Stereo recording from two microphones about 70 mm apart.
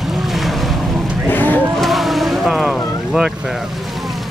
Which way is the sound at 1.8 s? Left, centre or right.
Centre.